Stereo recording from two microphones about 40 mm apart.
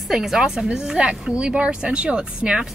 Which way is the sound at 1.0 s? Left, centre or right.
Right.